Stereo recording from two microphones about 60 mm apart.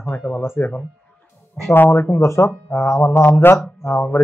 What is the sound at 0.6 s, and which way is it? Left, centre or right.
Speech, left.